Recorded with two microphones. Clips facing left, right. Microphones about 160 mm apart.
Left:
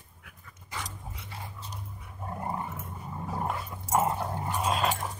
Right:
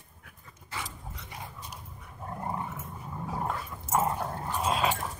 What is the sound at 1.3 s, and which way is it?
Dog, 15° right (ahead or behind).